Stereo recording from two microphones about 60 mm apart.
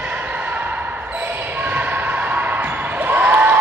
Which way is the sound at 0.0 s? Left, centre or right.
Right.